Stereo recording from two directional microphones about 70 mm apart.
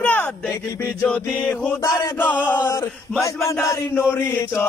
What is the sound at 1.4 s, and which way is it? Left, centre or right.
Mantra, left.